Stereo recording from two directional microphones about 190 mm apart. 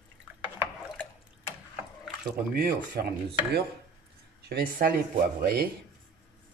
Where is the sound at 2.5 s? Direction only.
50° right (ahead or behind).